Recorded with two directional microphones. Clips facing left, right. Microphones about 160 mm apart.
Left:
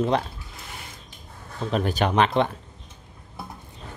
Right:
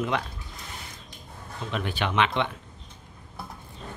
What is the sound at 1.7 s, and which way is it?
Speech, 40° left (ahead or behind).